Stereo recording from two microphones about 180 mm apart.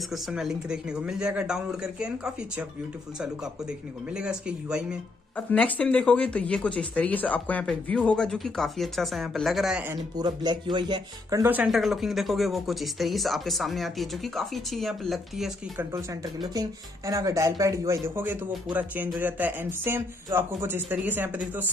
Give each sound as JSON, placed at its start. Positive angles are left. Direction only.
{"t": 0.1, "sound": "speech", "side_deg": -5}
{"t": 4.1, "sound": "speech", "side_deg": -5}
{"t": 5.5, "sound": "speech", "side_deg": 5}
{"t": 10.1, "sound": "speech", "side_deg": -25}
{"t": 15.9, "sound": "speech", "side_deg": -20}